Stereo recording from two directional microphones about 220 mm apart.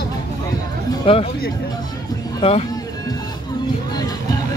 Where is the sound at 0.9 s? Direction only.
25° left (ahead or behind).